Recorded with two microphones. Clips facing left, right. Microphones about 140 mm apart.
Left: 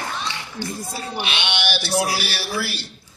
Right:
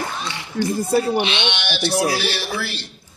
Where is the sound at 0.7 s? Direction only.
65° right (ahead or behind).